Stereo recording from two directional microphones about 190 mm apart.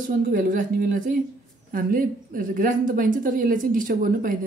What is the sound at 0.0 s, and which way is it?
A woman's voice, 45° right (ahead or behind).